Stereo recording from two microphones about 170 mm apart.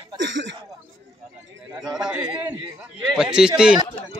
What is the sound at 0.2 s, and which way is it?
Speech, 90° right.